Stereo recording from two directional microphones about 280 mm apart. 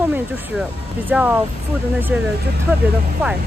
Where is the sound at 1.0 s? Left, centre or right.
Centre.